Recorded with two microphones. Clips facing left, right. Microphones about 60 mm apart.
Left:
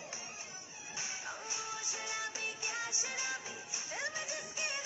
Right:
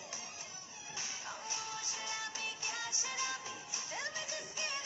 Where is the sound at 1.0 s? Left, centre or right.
Left.